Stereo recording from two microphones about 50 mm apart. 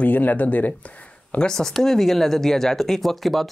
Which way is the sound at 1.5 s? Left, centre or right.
Centre.